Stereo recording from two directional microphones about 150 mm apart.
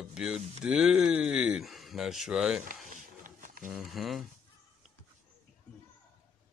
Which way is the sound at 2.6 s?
60° right (ahead or behind).